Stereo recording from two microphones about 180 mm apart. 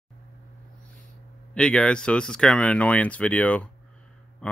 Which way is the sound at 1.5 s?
5° left (ahead or behind).